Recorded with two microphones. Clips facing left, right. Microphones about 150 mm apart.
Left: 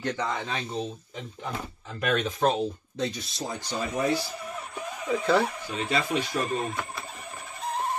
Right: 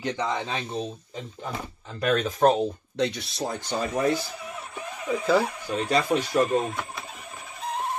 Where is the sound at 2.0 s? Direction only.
40° right (ahead or behind).